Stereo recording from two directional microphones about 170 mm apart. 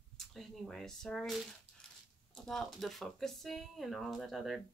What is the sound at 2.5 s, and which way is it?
Speech, centre (ahead or behind).